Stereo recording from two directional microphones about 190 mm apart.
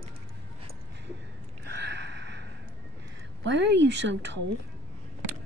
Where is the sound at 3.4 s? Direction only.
70° right (ahead or behind).